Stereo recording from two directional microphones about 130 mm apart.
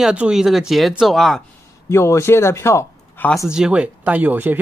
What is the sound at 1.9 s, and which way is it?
Speech, 20° left (ahead or behind).